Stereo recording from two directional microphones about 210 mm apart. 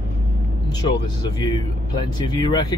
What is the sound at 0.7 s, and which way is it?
Speech, 20° left (ahead or behind).